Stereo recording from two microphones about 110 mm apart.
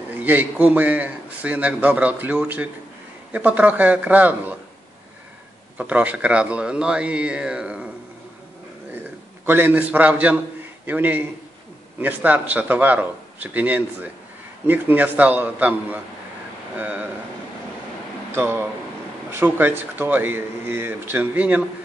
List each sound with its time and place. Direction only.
0.1 s a man's voice: 15° right (ahead or behind)
5.8 s a man's voice: 15° right (ahead or behind)
9.5 s a man's voice: 20° right (ahead or behind)
18.3 s speech: 20° right (ahead or behind)